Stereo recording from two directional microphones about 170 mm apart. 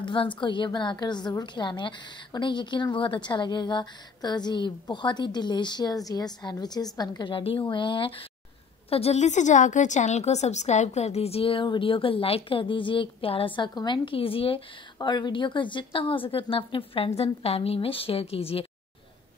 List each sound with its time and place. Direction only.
0.0 s a woman's voice: 30° left (ahead or behind)